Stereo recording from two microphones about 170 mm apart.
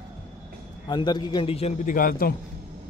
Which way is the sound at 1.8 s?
55° left (ahead or behind).